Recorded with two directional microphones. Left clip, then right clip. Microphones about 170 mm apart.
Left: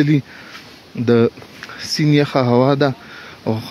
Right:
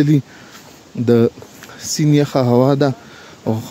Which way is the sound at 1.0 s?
20° right (ahead or behind).